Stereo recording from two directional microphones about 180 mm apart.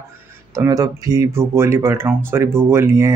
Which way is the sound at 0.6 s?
20° right (ahead or behind).